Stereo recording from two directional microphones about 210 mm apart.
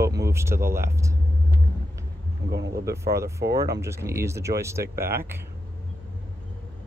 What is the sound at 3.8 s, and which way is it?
Speech, 15° right (ahead or behind).